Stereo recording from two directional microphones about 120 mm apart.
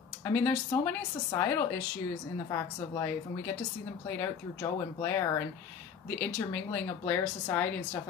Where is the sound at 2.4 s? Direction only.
25° left (ahead or behind).